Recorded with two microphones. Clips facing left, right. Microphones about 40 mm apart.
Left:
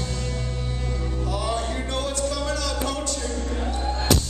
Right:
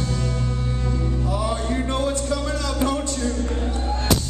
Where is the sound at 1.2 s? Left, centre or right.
Centre.